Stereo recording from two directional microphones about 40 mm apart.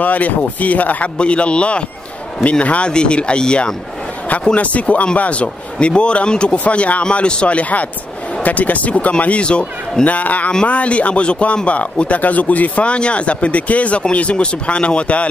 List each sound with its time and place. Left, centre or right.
0.0 s speech: left
1.1 s speech: left
2.9 s speech: left
4.6 s speech: left
6.6 s speech: left
10.0 s speech: left